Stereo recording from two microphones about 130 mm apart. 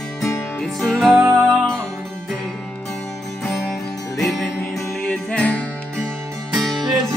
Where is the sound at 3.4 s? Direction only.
Centre (ahead or behind).